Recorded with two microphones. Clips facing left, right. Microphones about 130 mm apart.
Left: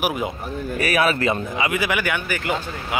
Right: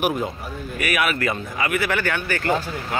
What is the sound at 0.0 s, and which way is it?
Speech, 5° left (ahead or behind).